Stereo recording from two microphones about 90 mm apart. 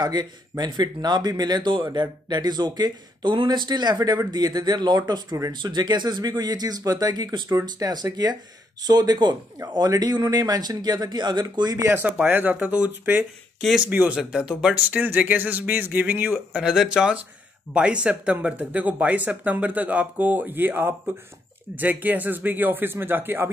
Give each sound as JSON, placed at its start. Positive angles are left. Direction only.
{"t": 0.0, "sound": "speech", "side_deg": -50}
{"t": 11.9, "sound": "speech", "side_deg": -20}
{"t": 13.6, "sound": "speech", "side_deg": 0}
{"t": 13.8, "sound": "speech", "side_deg": -15}
{"t": 16.5, "sound": "speech", "side_deg": -5}